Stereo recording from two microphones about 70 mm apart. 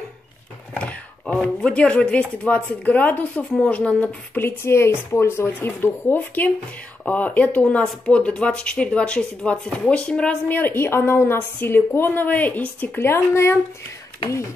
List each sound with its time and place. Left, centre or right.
0.7 s a sound: centre
2.0 s speech: centre
4.4 s a woman's voice: left; by 10.3 s centre
10.5 s a woman's voice: left
13.0 s a woman's voice: left